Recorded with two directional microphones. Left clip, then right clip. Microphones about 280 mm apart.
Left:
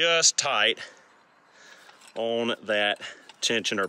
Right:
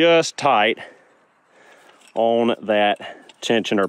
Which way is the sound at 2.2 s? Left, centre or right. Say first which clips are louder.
Right 8 dB; centre.